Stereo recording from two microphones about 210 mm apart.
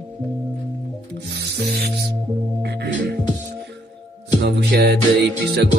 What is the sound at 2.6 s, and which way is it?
Music, 55° right (ahead or behind).